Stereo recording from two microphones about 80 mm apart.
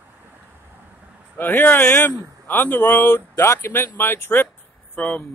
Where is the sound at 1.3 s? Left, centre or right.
Left.